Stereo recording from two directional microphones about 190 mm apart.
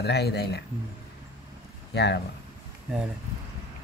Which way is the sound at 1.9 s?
65° left (ahead or behind).